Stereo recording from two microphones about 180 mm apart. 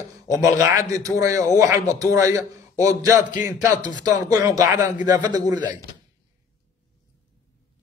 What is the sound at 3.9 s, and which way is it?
A man's voice, 20° right (ahead or behind).